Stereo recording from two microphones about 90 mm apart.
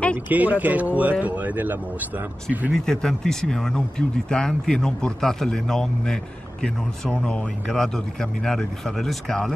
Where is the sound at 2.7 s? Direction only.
5° left (ahead or behind).